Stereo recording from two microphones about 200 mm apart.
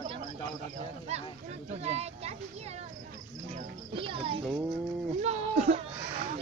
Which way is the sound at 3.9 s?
25° right (ahead or behind).